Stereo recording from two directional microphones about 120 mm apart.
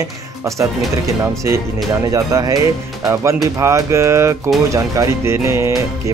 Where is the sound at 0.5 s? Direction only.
25° right (ahead or behind).